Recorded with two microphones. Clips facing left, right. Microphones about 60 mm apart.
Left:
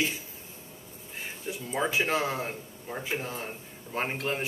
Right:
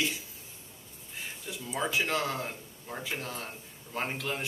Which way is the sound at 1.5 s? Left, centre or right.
Left.